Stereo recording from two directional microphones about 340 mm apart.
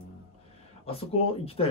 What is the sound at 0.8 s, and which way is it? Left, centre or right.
Speech, centre.